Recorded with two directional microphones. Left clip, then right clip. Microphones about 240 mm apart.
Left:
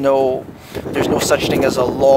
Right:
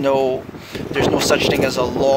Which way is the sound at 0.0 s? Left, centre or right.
Centre.